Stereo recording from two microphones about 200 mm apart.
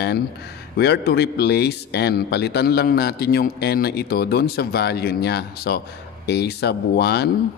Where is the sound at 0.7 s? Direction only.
55° left (ahead or behind).